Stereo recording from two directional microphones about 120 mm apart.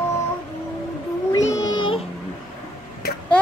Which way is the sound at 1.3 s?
30° left (ahead or behind).